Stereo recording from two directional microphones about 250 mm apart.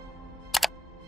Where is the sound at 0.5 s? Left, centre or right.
Centre.